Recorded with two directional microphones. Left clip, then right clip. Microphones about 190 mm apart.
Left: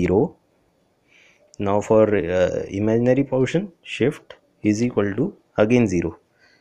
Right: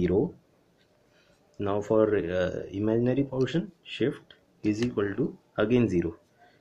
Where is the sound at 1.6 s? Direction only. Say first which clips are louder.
Left 8 dB; 30° left (ahead or behind).